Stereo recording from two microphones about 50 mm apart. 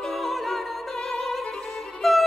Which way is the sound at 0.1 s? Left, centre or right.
Centre.